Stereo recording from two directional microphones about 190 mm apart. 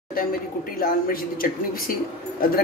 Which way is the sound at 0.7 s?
50° left (ahead or behind).